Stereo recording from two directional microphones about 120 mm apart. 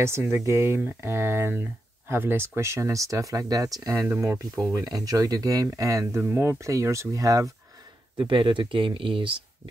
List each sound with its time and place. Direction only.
0.0 s speech: 20° right (ahead or behind)
4.7 s speech: 30° right (ahead or behind)
8.2 s speech: 40° right (ahead or behind)